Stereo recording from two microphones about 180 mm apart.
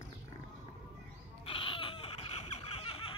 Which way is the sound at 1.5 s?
30° left (ahead or behind).